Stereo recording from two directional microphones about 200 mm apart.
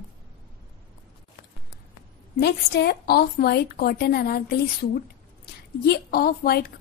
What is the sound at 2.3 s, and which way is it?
A woman's voice, 55° left (ahead or behind).